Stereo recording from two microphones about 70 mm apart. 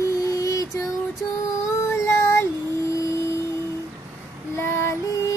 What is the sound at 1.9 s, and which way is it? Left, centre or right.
Child singing, left.